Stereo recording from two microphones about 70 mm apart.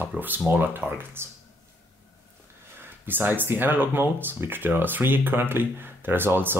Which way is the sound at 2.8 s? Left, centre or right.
Right.